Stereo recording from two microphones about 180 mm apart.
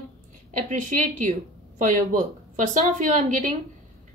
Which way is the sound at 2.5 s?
45° right (ahead or behind).